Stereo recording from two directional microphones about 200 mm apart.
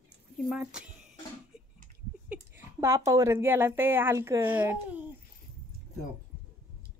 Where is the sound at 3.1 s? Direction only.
15° right (ahead or behind).